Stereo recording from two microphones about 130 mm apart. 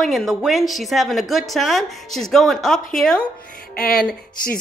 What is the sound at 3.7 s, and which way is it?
Music, 90° left.